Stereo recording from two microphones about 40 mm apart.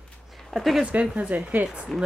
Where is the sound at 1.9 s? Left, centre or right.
Centre.